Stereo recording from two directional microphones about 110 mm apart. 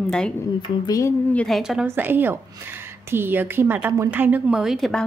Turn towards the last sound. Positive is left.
turn(degrees=0)  # may be behind; listen again after turning